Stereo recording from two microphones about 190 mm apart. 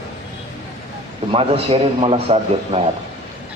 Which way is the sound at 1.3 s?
30° right (ahead or behind).